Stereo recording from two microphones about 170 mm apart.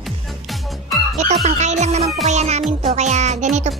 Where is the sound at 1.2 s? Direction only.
40° right (ahead or behind).